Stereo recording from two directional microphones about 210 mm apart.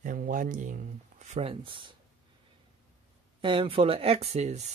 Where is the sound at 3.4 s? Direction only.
25° right (ahead or behind).